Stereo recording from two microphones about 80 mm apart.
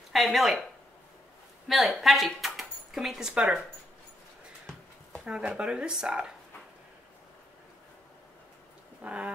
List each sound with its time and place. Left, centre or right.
0.1 s speech: centre
1.7 s speech: centre
5.2 s speech: centre
9.0 s speech: centre